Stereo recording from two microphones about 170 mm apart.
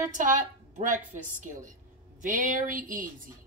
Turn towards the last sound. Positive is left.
turn(degrees=-55)  # may be behind; listen again after turning